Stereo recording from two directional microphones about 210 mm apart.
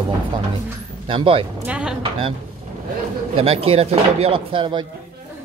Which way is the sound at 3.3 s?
25° right (ahead or behind).